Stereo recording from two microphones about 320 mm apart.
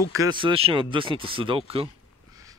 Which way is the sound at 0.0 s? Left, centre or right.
Centre.